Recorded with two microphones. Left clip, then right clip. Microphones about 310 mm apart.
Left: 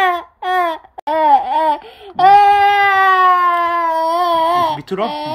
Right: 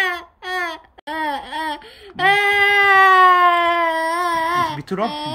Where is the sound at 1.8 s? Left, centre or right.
Centre.